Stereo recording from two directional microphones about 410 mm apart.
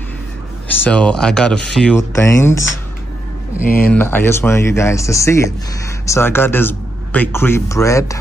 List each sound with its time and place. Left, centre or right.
0.7 s a man's voice: centre
3.6 s speech: left
3.9 s a man's voice: centre